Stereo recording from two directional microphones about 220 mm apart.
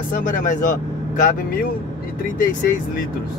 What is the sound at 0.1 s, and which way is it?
Speech, 40° left (ahead or behind).